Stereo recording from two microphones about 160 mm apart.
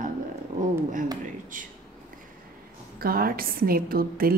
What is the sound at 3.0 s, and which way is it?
A woman's voice, 65° right (ahead or behind).